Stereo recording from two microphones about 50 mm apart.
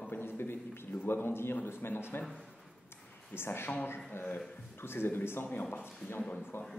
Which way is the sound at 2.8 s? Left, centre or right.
Left.